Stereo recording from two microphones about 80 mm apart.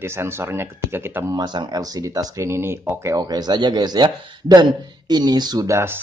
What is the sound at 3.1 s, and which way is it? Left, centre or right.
A man's voice, right.